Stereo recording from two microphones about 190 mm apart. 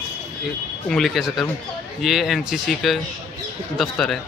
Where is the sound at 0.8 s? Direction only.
Centre (ahead or behind).